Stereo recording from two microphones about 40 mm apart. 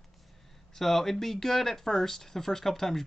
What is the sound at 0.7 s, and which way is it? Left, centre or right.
Speech, centre.